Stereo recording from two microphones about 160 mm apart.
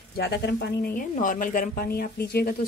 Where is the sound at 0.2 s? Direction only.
85° left.